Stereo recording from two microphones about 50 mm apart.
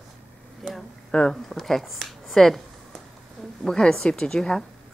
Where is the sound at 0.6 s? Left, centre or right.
Centre.